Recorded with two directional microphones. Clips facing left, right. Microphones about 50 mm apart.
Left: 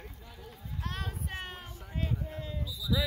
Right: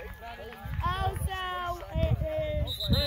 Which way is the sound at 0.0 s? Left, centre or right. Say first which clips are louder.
Right 7 dB; right.